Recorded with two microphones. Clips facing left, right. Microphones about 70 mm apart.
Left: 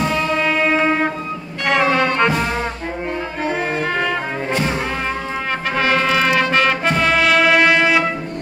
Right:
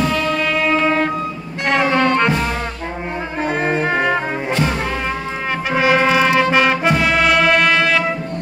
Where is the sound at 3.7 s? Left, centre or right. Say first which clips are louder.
Right 3 dB; centre.